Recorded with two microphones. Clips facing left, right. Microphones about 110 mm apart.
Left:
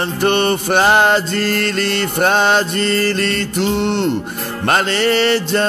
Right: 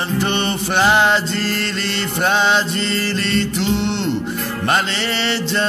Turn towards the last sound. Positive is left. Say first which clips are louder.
# left 6 dB
turn(degrees=45)  # may be behind; listen again after turning